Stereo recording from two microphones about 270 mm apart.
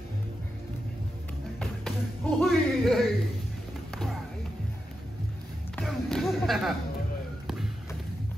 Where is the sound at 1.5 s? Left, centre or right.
Centre.